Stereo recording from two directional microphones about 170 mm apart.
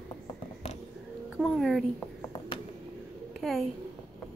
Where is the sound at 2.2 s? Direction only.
25° left (ahead or behind).